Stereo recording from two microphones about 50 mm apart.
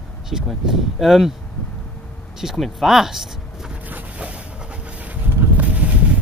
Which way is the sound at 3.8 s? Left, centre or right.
Right.